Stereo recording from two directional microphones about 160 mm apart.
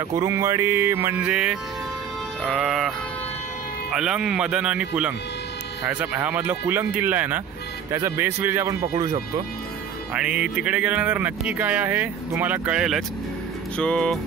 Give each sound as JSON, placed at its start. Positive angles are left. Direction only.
{"t": 0.1, "sound": "speech", "side_deg": -20}
{"t": 3.9, "sound": "speech", "side_deg": -5}
{"t": 8.9, "sound": "speech", "side_deg": -25}
{"t": 10.1, "sound": "speech", "side_deg": -5}